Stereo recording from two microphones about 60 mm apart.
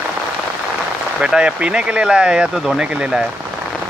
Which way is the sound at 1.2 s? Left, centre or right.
Centre.